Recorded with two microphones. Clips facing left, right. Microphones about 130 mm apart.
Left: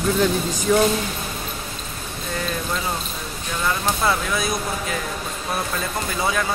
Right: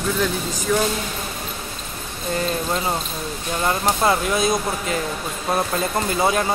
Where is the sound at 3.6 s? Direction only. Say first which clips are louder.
Right 2 dB; 25° right (ahead or behind).